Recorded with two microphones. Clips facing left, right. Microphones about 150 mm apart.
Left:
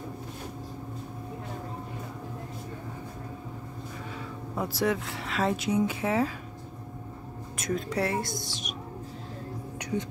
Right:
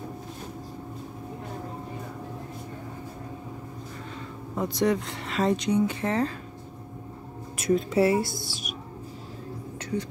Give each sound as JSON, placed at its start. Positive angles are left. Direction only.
{"t": 4.6, "sound": "speech", "side_deg": 5}
{"t": 7.5, "sound": "speech", "side_deg": -5}